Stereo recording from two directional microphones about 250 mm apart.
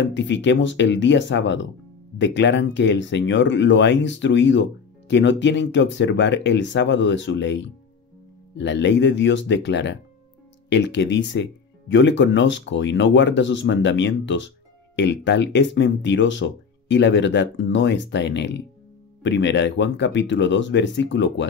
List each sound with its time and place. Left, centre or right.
0.1 s speech: left